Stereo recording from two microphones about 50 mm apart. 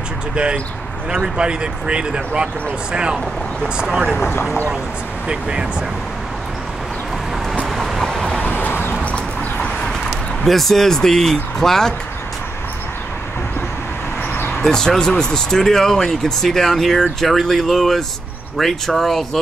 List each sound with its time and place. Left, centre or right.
1.1 s speech: centre
4.2 s speech: left
5.3 s speech: centre
7.6 s vehicle: centre
8.3 s vehicle: left
9.0 s bird: left
10.4 s speech: centre
14.7 s speech: centre